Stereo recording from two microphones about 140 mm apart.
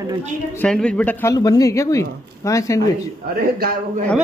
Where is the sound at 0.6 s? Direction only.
5° left (ahead or behind).